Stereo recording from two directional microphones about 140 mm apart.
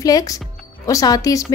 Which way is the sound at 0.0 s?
25° left (ahead or behind).